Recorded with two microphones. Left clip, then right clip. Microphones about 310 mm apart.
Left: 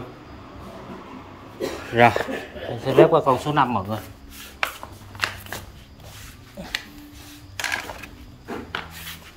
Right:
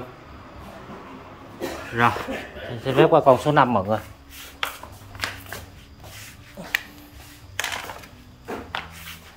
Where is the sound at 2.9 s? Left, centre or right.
Centre.